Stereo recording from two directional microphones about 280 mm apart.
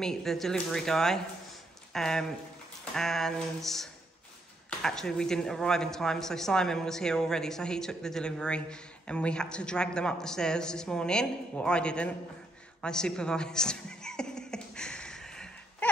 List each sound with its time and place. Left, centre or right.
0.0 s speech: centre
12.8 s beatboxing: centre